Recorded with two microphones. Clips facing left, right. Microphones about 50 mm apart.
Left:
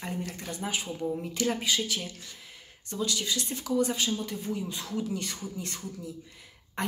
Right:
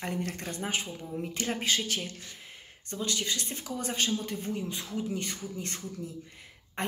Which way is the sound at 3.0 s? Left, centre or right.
Right.